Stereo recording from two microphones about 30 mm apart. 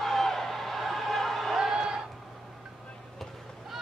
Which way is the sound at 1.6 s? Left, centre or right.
Centre.